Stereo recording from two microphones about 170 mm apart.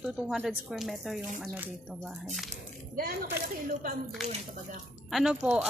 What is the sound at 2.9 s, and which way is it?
A woman's voice, 60° right (ahead or behind).